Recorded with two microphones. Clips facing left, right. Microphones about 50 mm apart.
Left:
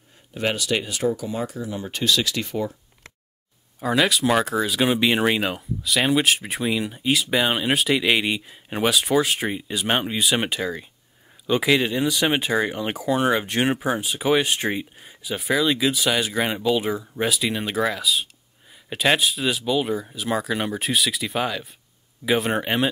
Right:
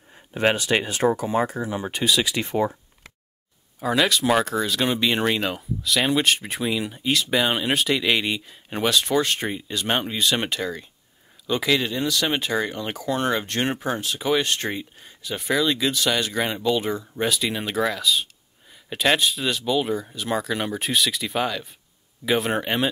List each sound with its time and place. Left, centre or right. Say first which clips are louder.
0.3 s speech: right 3 dB; right
1.8 s speech: even; centre
2.4 s speech: right 4 dB; right
3.8 s speech: left 1 dB; centre